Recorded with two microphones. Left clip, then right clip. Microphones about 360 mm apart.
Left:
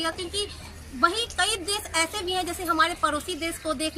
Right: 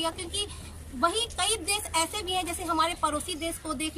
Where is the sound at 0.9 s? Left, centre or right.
Centre.